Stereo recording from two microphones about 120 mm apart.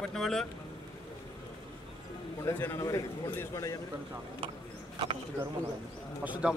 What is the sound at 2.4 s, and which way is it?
A man's voice, 25° left (ahead or behind).